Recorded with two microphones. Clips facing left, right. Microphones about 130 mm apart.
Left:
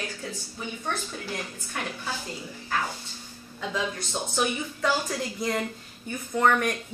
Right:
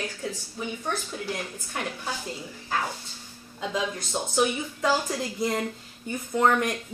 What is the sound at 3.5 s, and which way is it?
Speech, 15° right (ahead or behind).